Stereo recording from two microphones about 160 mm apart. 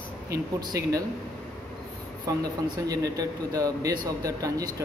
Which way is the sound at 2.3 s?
20° right (ahead or behind).